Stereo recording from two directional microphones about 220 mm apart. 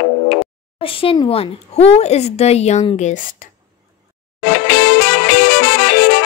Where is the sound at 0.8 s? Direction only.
25° left (ahead or behind).